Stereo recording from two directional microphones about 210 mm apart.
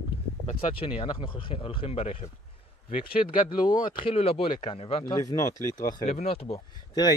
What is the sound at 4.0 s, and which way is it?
Speech, 25° left (ahead or behind).